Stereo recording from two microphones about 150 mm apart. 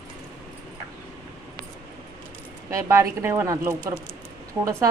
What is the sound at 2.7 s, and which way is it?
Speech, 20° right (ahead or behind).